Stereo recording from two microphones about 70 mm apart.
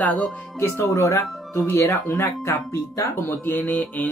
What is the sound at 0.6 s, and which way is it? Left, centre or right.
Speech, left.